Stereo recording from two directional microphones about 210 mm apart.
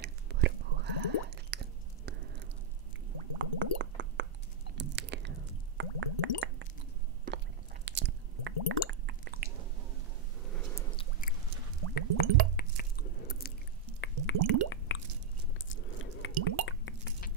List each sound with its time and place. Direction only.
0.0 s whispering: 55° right (ahead or behind)
3.3 s a sound: 60° right (ahead or behind)
4.7 s chewing: 55° right (ahead or behind)
5.8 s squish: 60° right (ahead or behind)
7.8 s squish: 55° right (ahead or behind)
10.5 s squish: 10° left (ahead or behind)
11.9 s drip: 50° left (ahead or behind)
13.4 s chewing: 45° left (ahead or behind)
14.0 s drip: 65° left (ahead or behind)
15.7 s biting: 65° left (ahead or behind)
16.4 s drip: 65° left (ahead or behind)